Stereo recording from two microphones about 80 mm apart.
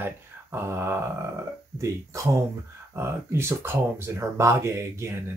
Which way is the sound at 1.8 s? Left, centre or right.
Right.